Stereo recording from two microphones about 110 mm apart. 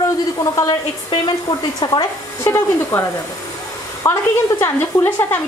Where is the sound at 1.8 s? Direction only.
40° left (ahead or behind).